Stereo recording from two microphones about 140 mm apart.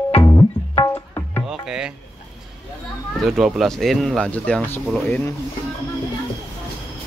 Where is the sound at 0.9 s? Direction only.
15° left (ahead or behind).